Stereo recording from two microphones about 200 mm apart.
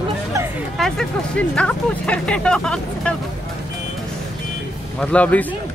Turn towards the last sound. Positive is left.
turn(degrees=5)  # may be behind; listen again after turning